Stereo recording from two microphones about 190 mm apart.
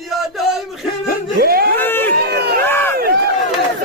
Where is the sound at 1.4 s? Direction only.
55° right (ahead or behind).